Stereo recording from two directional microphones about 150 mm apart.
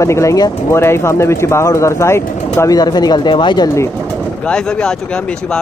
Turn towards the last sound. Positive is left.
turn(degrees=5)  # may be behind; listen again after turning